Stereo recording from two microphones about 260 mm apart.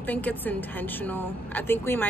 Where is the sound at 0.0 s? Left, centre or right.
Centre.